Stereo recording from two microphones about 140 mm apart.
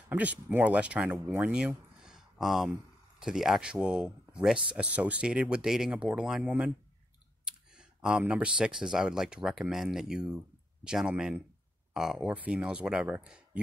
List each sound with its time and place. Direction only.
0.1 s speech: 10° right (ahead or behind)
1.4 s a sound: 5° right (ahead or behind)
3.2 s speech: 5° right (ahead or behind)